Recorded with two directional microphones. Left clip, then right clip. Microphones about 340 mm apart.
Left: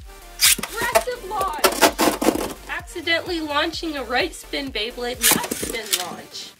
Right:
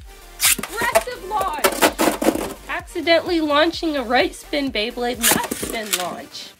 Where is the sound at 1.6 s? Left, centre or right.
Centre.